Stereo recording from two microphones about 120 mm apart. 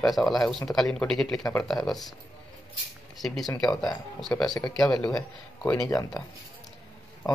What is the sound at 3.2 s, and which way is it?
Speech, centre (ahead or behind).